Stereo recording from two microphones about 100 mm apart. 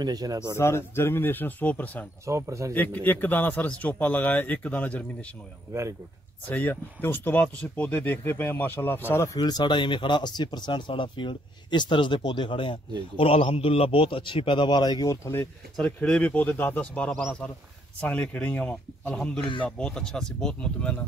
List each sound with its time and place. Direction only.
0.0 s speech: 40° right (ahead or behind)
0.6 s speech: 25° left (ahead or behind)
2.2 s speech: 30° right (ahead or behind)
2.7 s a man's voice: 15° left (ahead or behind)
5.7 s speech: 30° right (ahead or behind)
6.5 s speech: 20° left (ahead or behind)
9.4 s a man's voice: 45° left (ahead or behind)
15.0 s speech: 25° left (ahead or behind)
15.7 s a man's voice: 10° left (ahead or behind)